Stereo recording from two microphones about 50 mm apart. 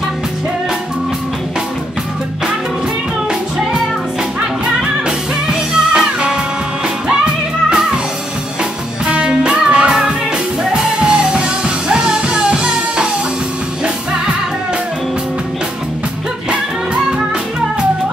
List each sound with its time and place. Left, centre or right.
5.0 s music: centre
9.0 s music: centre